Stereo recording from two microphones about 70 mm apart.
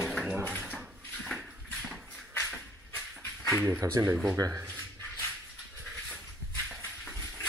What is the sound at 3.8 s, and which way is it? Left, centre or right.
Speech, right.